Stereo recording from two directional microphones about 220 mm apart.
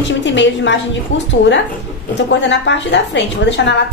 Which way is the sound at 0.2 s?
55° left (ahead or behind).